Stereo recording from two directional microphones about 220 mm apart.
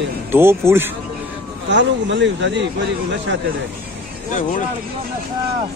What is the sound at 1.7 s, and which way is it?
Speech, 55° right (ahead or behind).